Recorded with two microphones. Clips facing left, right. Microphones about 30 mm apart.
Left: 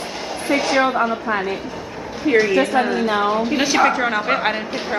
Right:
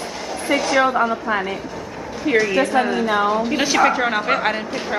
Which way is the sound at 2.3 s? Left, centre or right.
Centre.